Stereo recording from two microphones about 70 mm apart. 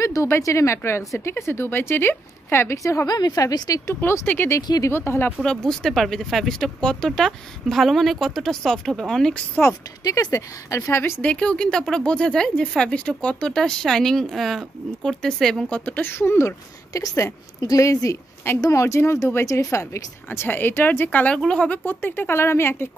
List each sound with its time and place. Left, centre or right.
0.0 s speech: left
3.2 s a woman's voice: left
3.8 s speech: left
4.6 s a woman's voice: left
4.8 s speech: left
5.4 s speech: centre
10.0 s speech: left
10.9 s speech: left
11.2 s speech: centre
15.7 s speech: left
20.2 s speech: left
21.4 s speech: centre; by 22.8 s left